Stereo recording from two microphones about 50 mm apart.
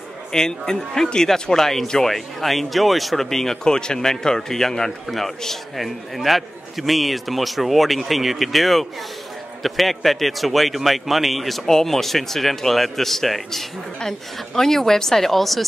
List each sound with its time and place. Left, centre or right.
0.3 s a woman's voice: centre